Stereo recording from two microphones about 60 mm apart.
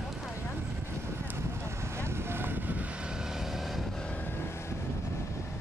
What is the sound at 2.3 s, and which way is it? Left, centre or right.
Vehicle, right.